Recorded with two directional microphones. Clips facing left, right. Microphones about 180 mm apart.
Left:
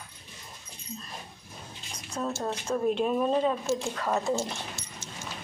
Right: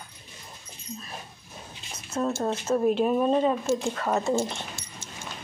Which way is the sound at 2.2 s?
Centre (ahead or behind).